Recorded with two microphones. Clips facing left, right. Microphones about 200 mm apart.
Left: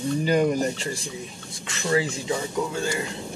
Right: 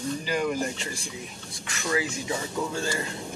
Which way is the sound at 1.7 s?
30° left (ahead or behind).